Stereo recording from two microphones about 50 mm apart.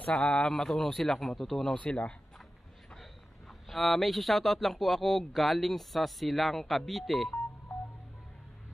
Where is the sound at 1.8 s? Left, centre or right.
Left.